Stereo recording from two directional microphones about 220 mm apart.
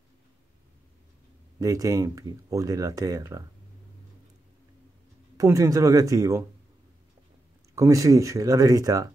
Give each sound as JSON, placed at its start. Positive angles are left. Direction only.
{"t": 1.6, "sound": "speech", "side_deg": -15}
{"t": 5.4, "sound": "speech", "side_deg": -15}
{"t": 7.7, "sound": "speech", "side_deg": -15}